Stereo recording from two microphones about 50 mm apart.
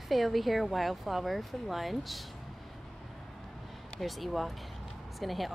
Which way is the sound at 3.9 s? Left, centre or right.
Centre.